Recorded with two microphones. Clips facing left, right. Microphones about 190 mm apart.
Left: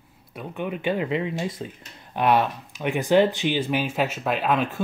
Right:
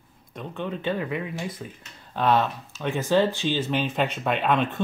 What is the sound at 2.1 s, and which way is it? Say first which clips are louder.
Speech: left 1 dB; 10° left (ahead or behind).